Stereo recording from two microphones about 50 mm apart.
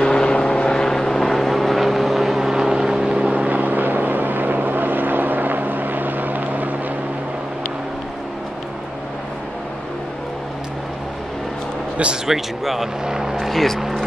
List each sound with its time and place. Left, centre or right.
0.0 s vehicle: centre; by 6.7 s right
12.3 s speech: centre
13.5 s speech: centre